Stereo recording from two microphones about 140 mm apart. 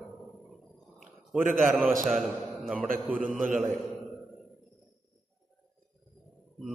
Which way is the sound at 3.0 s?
10° right (ahead or behind).